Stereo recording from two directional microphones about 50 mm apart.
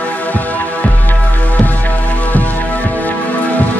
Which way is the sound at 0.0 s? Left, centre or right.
Left.